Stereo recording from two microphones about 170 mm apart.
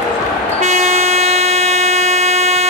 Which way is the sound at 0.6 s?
40° right (ahead or behind).